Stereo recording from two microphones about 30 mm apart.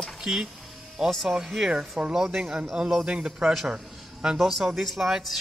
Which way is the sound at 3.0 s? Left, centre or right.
Right.